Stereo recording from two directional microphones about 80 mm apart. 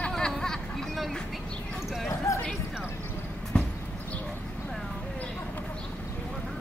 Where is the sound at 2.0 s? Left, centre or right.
Left.